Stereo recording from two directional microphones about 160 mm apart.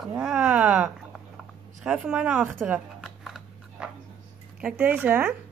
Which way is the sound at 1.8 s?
5° right (ahead or behind).